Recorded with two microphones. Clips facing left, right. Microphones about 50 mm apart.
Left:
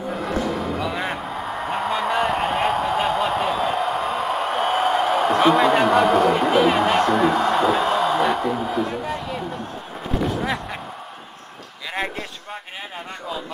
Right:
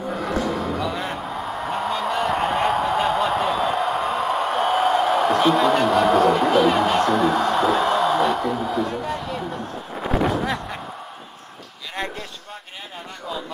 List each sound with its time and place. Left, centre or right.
0.1 s music: centre
1.3 s honk: centre
5.9 s speech: centre
10.0 s a sound: right
10.4 s speech: centre
11.9 s speech: centre